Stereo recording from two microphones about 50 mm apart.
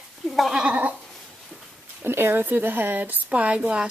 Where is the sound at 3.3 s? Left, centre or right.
Right.